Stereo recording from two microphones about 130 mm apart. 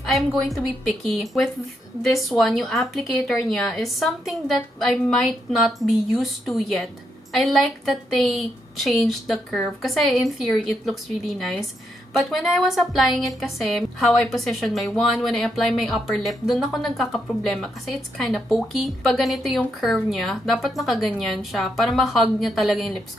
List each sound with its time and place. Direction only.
0.1 s a woman's voice: centre (ahead or behind)